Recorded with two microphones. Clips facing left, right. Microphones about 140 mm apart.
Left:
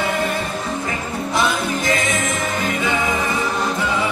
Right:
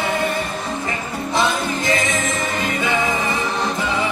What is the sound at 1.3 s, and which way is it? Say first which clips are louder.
Music: even; 25° right (ahead or behind).